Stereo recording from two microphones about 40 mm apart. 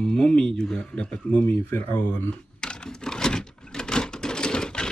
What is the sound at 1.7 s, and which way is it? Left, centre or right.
Speech, left.